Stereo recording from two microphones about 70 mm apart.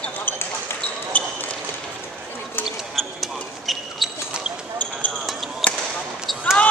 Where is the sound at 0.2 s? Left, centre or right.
Left.